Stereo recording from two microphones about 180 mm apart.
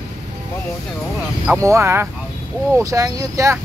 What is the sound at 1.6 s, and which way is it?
Speech, 15° right (ahead or behind).